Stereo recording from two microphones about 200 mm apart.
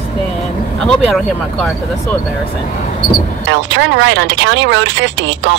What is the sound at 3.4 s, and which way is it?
Speech, 65° right (ahead or behind).